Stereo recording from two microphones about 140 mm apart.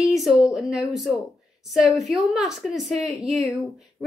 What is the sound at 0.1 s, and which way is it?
A woman's voice, centre (ahead or behind).